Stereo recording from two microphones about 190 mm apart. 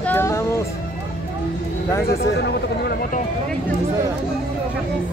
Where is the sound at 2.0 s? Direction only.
55° left (ahead or behind).